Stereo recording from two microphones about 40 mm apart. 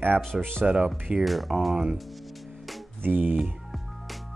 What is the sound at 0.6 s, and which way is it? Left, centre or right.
Speech, right.